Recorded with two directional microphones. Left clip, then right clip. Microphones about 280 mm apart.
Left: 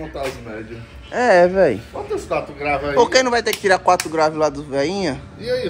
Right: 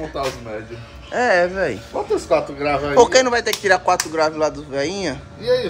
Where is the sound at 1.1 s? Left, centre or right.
Centre.